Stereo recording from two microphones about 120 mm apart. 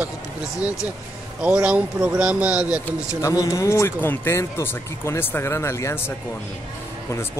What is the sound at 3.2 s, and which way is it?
Speech, 30° left (ahead or behind).